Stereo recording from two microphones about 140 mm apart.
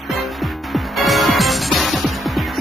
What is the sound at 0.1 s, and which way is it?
Music, centre (ahead or behind).